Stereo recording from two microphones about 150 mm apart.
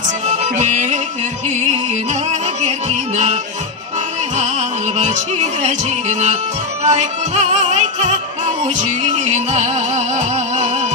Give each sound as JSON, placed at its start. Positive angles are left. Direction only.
{"t": 0.3, "sound": "music", "side_deg": -50}
{"t": 2.6, "sound": "music", "side_deg": -50}
{"t": 4.4, "sound": "music", "side_deg": -50}